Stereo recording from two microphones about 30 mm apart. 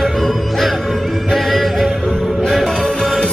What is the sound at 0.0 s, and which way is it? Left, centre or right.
Music, centre.